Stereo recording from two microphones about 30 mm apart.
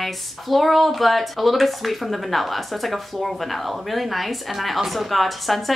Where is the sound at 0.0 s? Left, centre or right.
Centre.